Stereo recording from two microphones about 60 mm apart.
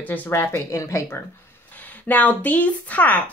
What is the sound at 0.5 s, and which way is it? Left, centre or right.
Speech, left.